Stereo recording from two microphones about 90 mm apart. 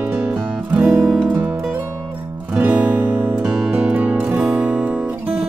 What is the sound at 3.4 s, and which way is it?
Music, 10° right (ahead or behind).